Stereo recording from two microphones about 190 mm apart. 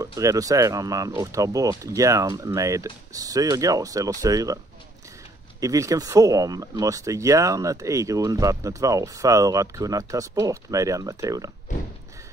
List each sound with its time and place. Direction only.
0.0 s speech: 15° right (ahead or behind)
5.6 s speech: 15° right (ahead or behind)